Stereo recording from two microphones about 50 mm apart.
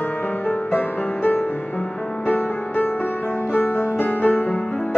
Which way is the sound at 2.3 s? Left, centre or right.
Left.